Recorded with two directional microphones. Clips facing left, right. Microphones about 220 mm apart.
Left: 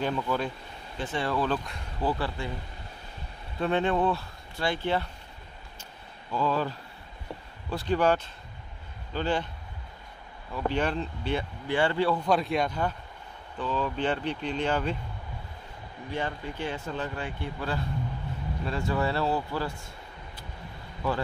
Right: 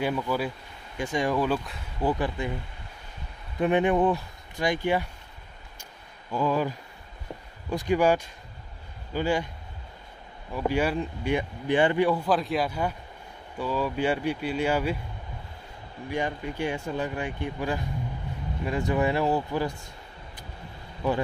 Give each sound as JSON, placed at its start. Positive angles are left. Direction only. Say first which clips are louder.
{"t": 0.0, "sound": "speech", "louder": "right 2 dB", "side_deg": -10}
{"t": 3.5, "sound": "speech", "louder": "right 4 dB", "side_deg": -15}
{"t": 6.3, "sound": "speech", "louder": "right 2 dB", "side_deg": -15}
{"t": 10.5, "sound": "speech", "louder": "right 3 dB", "side_deg": -10}
{"t": 12.3, "sound": "speech", "louder": "even", "side_deg": 0}
{"t": 16.1, "sound": "speech", "louder": "right 3 dB", "side_deg": -15}